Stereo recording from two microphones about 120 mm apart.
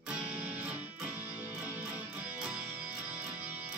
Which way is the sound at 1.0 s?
10° right (ahead or behind).